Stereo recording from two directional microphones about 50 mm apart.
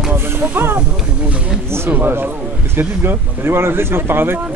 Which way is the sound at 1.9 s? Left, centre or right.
Right.